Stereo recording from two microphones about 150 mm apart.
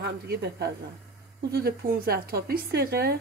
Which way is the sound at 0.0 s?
90° right.